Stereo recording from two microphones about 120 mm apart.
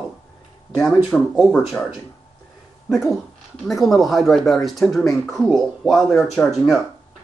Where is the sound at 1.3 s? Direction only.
Centre (ahead or behind).